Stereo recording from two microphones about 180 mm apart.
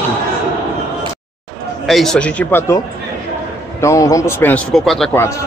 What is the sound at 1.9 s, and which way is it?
Speech, centre (ahead or behind).